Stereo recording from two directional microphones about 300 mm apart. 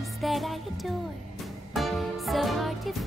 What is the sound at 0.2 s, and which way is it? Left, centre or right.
Music, centre.